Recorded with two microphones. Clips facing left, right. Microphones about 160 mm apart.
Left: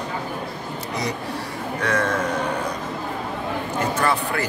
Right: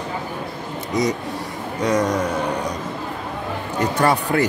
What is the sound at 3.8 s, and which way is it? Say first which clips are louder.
Speech: right 4 dB; 40° right (ahead or behind).